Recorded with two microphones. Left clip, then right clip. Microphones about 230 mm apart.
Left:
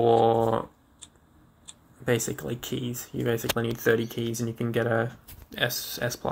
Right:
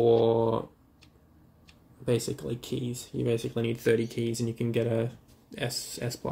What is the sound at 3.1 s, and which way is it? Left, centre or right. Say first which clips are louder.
Speech: left 2 dB; centre.